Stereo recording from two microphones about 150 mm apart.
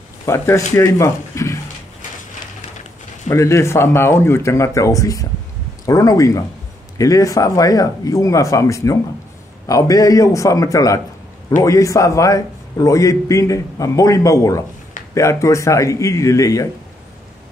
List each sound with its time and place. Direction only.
0.2 s speech: 20° left (ahead or behind)
3.3 s a man's voice: 20° left (ahead or behind)